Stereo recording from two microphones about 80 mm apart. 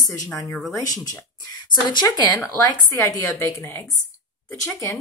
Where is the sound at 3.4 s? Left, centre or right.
Left.